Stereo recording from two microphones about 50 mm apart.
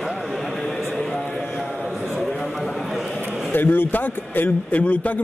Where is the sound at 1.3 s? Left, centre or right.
Centre.